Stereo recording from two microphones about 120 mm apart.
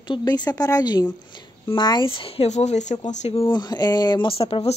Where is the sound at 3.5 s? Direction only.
35° left (ahead or behind).